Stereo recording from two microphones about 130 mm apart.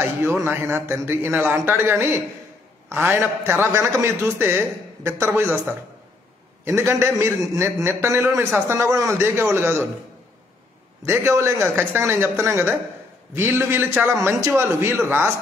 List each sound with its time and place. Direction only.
0.0 s a man's voice: 15° right (ahead or behind)
11.0 s a man's voice: 20° right (ahead or behind)